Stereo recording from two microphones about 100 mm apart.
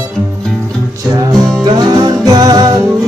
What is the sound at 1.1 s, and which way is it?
Music, 45° right (ahead or behind).